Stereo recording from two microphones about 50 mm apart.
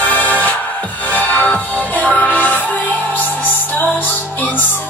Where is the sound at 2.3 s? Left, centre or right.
Left.